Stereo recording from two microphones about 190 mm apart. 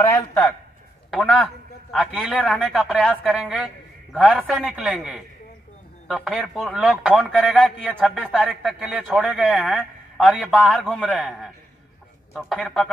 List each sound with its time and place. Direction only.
1.1 s a man's voice: 5° left (ahead or behind)
12.4 s a man's voice: centre (ahead or behind)